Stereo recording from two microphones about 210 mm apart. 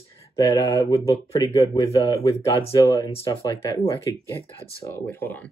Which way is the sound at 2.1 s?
30° left (ahead or behind).